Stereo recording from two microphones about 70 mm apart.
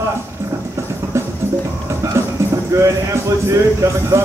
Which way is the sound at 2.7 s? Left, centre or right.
Right.